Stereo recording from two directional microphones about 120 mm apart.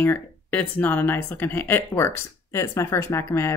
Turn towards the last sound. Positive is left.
turn(degrees=20)  # may be behind; listen again after turning